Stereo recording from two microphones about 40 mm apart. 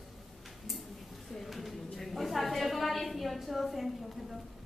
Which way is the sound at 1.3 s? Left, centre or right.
Centre.